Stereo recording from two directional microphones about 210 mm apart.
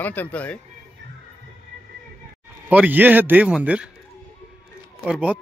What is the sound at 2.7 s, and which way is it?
A man's voice, 5° right (ahead or behind).